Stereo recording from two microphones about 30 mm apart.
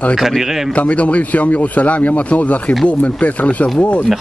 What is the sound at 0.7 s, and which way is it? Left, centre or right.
Speech, left.